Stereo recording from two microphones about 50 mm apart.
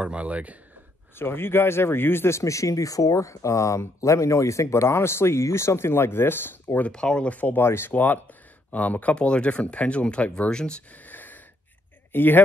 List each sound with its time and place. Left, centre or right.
0.0 s speech: right
1.1 s speech: left
6.9 s speech: centre
7.3 s speech: left
7.6 s speech: left
7.9 s speech: left; by 10.8 s centre
11.1 s wheeze: left
12.1 s speech: left